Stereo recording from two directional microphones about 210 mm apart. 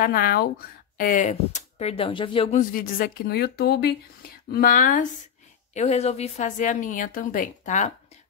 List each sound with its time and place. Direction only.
0.0 s speech: 45° left (ahead or behind)